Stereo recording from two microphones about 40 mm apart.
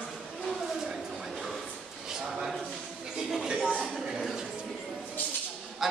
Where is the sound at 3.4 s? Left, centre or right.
Right.